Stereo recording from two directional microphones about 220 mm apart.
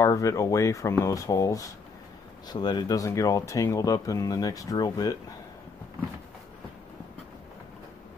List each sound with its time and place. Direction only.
0.0 s speech: 15° left (ahead or behind)